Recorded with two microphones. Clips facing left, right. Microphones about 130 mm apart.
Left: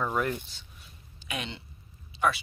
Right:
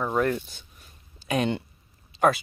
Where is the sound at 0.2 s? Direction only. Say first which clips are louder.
Right 6 dB; 50° right (ahead or behind).